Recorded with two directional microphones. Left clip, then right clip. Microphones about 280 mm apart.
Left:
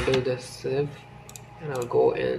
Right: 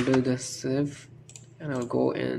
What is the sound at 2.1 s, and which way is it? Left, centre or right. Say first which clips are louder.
Speech: left 4 dB; right.